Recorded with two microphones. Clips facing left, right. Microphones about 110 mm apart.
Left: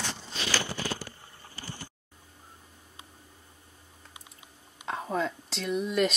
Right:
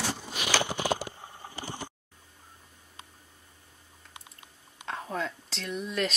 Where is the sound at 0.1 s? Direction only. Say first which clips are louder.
Right 3 dB; 15° right (ahead or behind).